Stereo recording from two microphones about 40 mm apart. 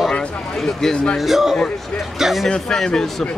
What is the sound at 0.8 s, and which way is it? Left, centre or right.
Speech, centre.